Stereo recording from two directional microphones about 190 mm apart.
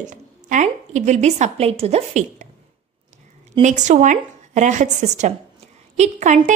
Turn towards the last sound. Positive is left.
turn(degrees=-40)  # may be behind; listen again after turning